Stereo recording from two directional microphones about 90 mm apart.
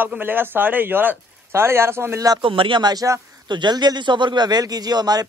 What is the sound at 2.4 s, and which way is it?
Speech, 70° right (ahead or behind).